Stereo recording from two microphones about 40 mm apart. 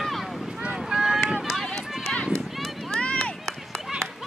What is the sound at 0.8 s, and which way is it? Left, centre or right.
Run, centre.